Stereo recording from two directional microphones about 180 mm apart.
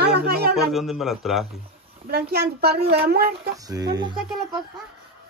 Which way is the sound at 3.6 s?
20° right (ahead or behind).